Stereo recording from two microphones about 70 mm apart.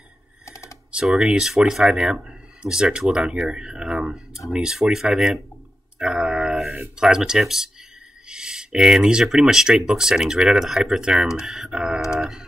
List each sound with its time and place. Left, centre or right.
0.5 s computer keyboard: left
0.9 s speech: centre